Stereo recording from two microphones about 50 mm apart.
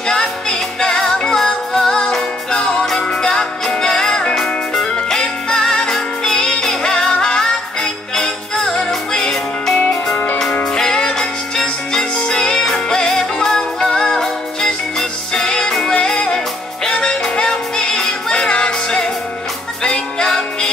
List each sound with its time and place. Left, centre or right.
0.1 s music: centre